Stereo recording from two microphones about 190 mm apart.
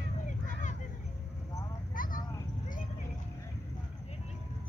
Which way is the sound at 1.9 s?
45° left (ahead or behind).